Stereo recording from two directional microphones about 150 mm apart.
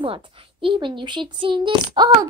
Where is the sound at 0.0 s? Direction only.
35° right (ahead or behind).